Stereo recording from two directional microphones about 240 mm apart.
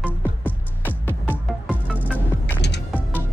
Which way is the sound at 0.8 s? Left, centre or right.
Centre.